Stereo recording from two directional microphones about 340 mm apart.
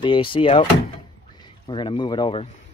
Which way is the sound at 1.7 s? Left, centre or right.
Centre.